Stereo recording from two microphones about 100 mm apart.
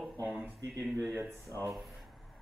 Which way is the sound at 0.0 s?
15° right (ahead or behind).